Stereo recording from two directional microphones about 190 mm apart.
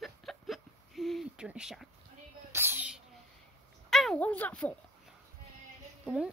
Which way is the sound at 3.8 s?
Centre (ahead or behind).